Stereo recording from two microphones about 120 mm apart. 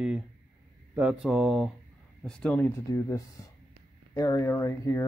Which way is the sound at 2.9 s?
30° left (ahead or behind).